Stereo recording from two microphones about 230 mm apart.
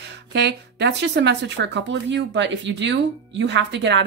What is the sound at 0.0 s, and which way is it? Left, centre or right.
Speech, right.